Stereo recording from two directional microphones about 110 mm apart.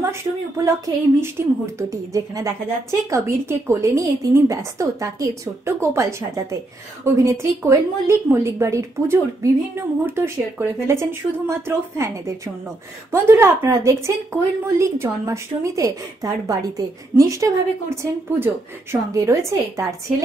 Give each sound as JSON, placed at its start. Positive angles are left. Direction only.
{"t": 0.7, "sound": "a woman's voice", "side_deg": -25}